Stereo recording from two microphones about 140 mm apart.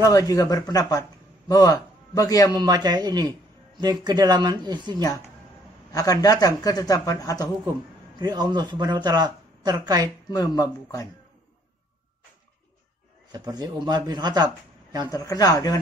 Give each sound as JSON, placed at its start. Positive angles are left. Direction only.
{"t": 0.1, "sound": "a man's voice", "side_deg": 25}
{"t": 2.6, "sound": "speech", "side_deg": -30}
{"t": 5.9, "sound": "speech", "side_deg": 25}
{"t": 8.2, "sound": "speech", "side_deg": -30}
{"t": 10.3, "sound": "speech", "side_deg": 25}
{"t": 13.3, "sound": "speech", "side_deg": -30}
{"t": 15.0, "sound": "speech", "side_deg": 25}